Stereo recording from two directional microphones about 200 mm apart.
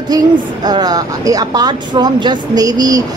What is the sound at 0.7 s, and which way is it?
Speech, 20° right (ahead or behind).